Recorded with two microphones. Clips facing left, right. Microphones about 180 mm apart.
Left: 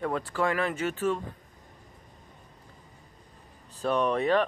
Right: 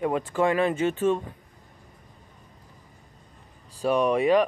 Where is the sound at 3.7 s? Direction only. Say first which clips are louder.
Right 4 dB; 10° right (ahead or behind).